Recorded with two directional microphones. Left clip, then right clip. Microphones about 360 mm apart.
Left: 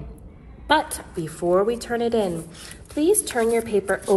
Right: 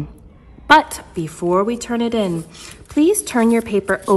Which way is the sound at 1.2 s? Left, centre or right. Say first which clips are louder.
Right 2 dB; centre.